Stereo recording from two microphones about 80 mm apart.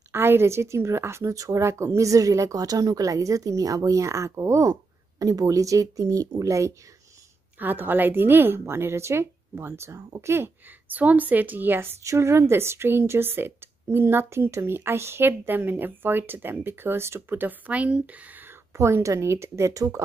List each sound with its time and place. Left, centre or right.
0.1 s a woman's voice: right
7.5 s speech: right
12.0 s speech: right